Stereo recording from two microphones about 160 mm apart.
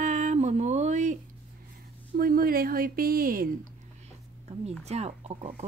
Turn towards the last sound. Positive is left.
turn(degrees=-40)  # may be behind; listen again after turning